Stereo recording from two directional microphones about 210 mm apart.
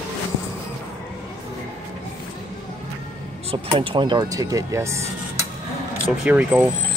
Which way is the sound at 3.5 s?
25° right (ahead or behind).